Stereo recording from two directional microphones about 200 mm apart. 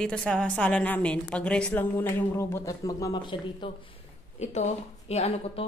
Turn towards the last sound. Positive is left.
turn(degrees=30)  # may be behind; listen again after turning